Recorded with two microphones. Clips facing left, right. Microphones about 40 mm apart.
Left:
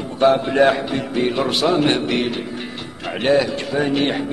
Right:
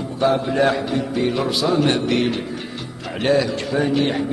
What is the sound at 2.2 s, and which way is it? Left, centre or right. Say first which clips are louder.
Speech: right 1 dB; centre.